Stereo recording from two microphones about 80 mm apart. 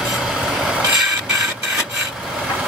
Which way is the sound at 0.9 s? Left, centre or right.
Centre.